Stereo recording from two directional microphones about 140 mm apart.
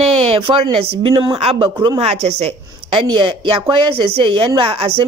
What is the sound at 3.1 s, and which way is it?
Speech, 35° right (ahead or behind).